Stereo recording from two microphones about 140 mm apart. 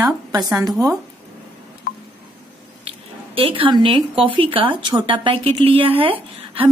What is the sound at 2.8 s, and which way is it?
A woman's voice, 40° right (ahead or behind).